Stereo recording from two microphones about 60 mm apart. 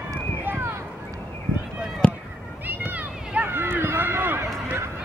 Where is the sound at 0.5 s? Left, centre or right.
Right.